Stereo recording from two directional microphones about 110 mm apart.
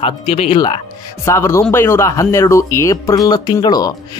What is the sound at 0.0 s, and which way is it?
Speech, 65° left (ahead or behind).